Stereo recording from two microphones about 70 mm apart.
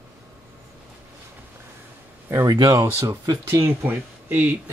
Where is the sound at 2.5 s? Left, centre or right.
Right.